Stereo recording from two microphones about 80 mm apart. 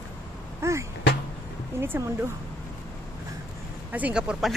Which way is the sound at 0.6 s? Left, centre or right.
Right.